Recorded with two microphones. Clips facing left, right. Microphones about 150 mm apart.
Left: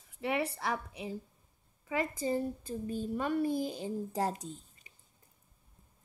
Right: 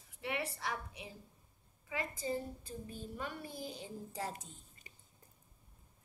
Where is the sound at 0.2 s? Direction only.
45° left (ahead or behind).